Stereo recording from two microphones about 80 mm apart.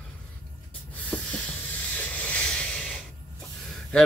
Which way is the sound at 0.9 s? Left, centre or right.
Centre.